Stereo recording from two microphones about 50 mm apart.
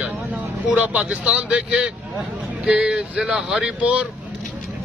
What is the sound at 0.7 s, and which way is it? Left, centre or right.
Speech, right.